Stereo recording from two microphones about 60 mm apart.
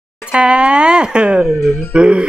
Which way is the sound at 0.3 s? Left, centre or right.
Centre.